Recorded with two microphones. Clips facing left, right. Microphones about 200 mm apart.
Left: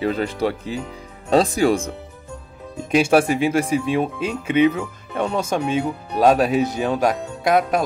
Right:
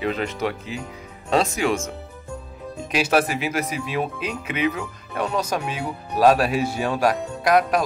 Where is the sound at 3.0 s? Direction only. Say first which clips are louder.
Left 4 dB; 30° left (ahead or behind).